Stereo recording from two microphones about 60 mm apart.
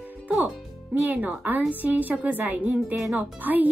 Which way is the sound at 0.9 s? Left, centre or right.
Right.